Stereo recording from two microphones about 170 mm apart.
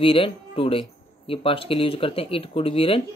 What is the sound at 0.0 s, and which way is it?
Speech, 35° left (ahead or behind).